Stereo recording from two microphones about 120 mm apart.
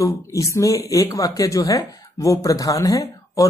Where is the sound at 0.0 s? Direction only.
25° left (ahead or behind).